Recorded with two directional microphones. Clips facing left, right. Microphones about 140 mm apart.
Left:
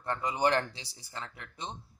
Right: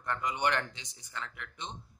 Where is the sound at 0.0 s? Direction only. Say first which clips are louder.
Left 3 dB; 30° left (ahead or behind).